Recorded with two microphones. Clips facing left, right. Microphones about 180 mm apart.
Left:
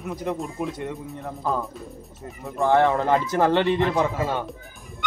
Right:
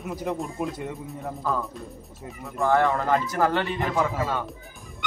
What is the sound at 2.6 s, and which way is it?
Speech, 20° left (ahead or behind).